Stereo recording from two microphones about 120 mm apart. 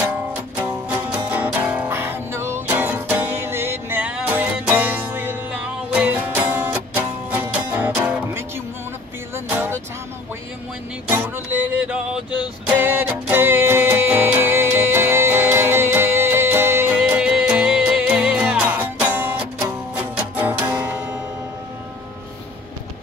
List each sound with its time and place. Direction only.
0.6 s music: 10° right (ahead or behind)
11.1 s music: 15° right (ahead or behind)